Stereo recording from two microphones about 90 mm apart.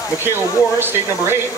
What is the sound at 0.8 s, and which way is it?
Speech, 25° right (ahead or behind).